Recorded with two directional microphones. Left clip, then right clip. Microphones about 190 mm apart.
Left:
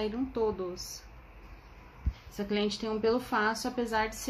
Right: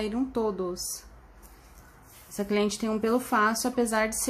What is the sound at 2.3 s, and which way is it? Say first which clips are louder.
A woman's voice: right 4 dB; 55° right (ahead or behind).